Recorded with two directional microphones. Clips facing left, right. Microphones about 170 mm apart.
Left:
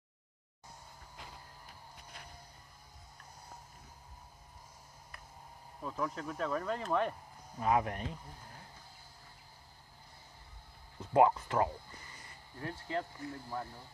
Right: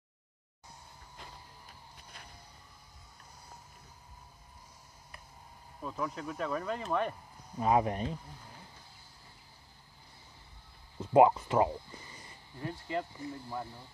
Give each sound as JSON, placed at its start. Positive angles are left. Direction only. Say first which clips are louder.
{"t": 5.8, "sound": "speech", "louder": "right 1 dB", "side_deg": 0}
{"t": 7.6, "sound": "speech", "louder": "right 3 dB", "side_deg": -25}
{"t": 11.0, "sound": "speech", "louder": "right 4 dB", "side_deg": -20}
{"t": 12.6, "sound": "speech", "louder": "right 2 dB", "side_deg": -10}